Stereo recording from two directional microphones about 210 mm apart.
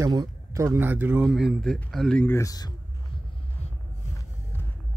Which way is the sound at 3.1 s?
25° left (ahead or behind).